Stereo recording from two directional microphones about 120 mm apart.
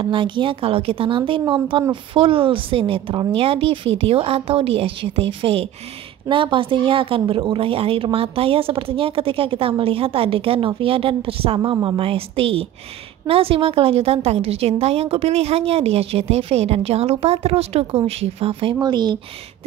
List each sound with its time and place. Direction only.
0.0 s a woman's voice: 45° right (ahead or behind)
18.8 s speech: 35° right (ahead or behind)